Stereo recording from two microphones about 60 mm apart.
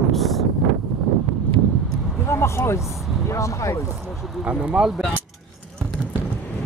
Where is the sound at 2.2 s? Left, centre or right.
Left.